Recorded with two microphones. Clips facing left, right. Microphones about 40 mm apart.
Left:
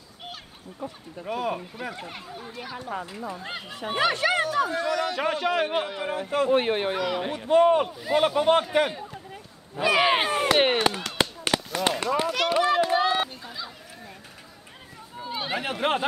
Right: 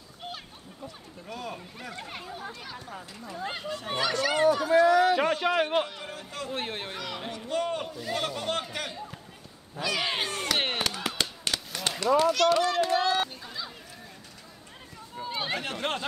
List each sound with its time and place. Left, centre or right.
0.8 s a man's voice: left
1.6 s speech: centre
2.0 s speech: centre
2.5 s speech: centre
2.9 s a man's voice: left
4.6 s speech: centre
5.7 s speech: centre
6.0 s a man's voice: left
11.1 s a sound: centre
12.2 s speech: centre
13.3 s a sound: centre
15.1 s a sound: centre
15.6 s speech: centre